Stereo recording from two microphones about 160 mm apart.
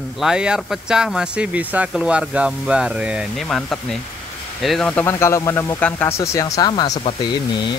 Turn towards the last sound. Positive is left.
turn(degrees=25)  # may be behind; listen again after turning